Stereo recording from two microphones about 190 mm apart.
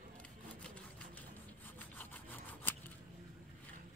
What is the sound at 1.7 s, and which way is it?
Sawing, 10° left (ahead or behind).